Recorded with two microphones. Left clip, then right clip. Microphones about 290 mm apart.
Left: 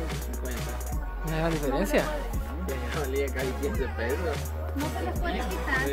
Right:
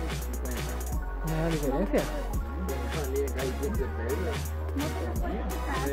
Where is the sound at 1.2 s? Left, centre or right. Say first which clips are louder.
Left 2 dB; centre.